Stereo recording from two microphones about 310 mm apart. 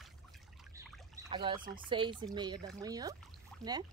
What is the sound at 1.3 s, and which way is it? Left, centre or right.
Speech, centre.